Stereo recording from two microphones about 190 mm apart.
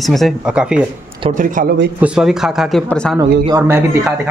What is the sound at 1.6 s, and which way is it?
Speech, 45° right (ahead or behind).